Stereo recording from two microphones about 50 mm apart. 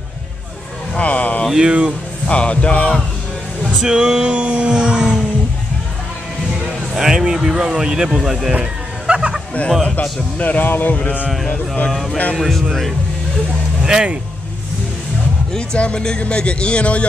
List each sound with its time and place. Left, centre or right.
0.9 s music: left
1.5 s speech: centre
2.2 s speech: left
3.6 s speech: centre
6.9 s speech: centre
8.5 s music: right
10.4 s speech: left
11.9 s speech: centre
13.8 s speech: centre
15.5 s speech: centre